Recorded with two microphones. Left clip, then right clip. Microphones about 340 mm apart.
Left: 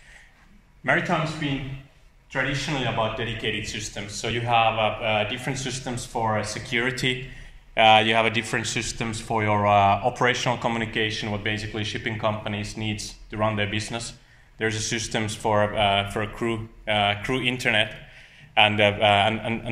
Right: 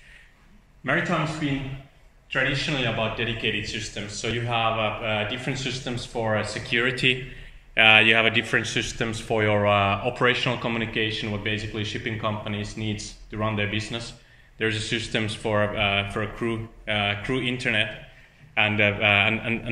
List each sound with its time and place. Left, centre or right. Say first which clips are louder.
2.3 s speech: right 2 dB; centre